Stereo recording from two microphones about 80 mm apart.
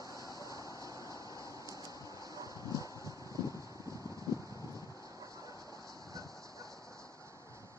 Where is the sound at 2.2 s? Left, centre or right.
Right.